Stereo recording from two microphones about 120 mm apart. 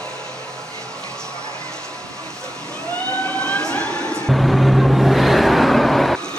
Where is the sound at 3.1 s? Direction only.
10° left (ahead or behind).